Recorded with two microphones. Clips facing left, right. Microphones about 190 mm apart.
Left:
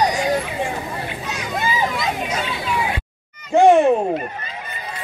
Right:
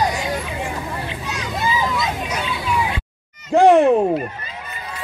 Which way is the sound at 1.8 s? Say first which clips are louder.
Even; 35° left (ahead or behind).